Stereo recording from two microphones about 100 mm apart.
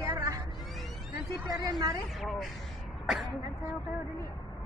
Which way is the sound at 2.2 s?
Centre (ahead or behind).